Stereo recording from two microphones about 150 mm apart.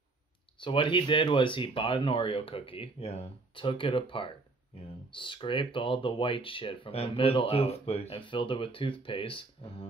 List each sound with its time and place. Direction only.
0.6 s speech: 35° left (ahead or behind)